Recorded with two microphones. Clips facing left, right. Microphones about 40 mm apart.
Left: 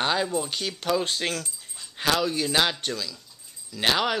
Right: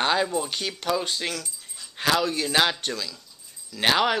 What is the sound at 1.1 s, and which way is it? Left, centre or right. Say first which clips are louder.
Speech: left 1 dB; centre.